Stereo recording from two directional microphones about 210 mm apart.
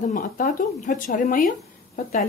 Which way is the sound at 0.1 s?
40° left (ahead or behind).